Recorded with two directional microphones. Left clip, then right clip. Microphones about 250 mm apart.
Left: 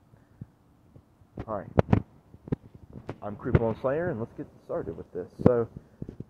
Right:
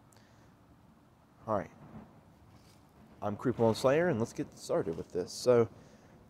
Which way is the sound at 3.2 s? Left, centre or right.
Centre.